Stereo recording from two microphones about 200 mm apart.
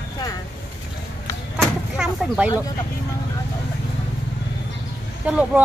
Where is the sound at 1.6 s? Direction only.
5° right (ahead or behind).